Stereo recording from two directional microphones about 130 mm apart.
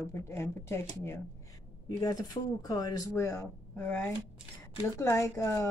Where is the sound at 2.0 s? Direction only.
30° left (ahead or behind).